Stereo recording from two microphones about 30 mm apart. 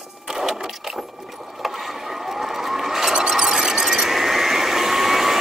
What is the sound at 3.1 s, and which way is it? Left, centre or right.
Squeal, centre.